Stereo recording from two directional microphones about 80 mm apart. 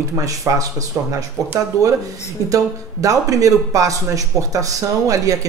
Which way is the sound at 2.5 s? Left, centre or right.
Right.